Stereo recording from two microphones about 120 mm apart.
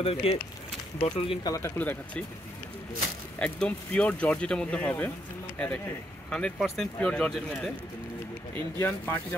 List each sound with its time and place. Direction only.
0.0 s speech: 55° left (ahead or behind)
1.4 s speech: 25° left (ahead or behind)
1.8 s speech: 15° left (ahead or behind)
3.3 s speech: 10° left (ahead or behind)
6.3 s speech: 5° left (ahead or behind)
8.5 s speech: 20° left (ahead or behind)